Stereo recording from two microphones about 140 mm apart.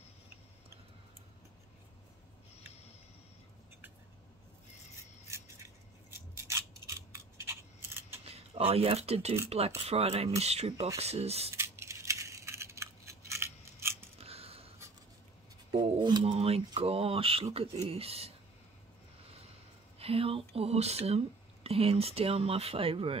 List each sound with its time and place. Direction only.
5.3 s scissors: 20° right (ahead or behind)
8.3 s speech: 45° right (ahead or behind)
11.5 s a sound: 20° right (ahead or behind)
13.3 s scissors: 20° right (ahead or behind)
14.1 s scissors: 45° right (ahead or behind)
16.0 s speech: 35° right (ahead or behind)
20.0 s speech: 45° right (ahead or behind)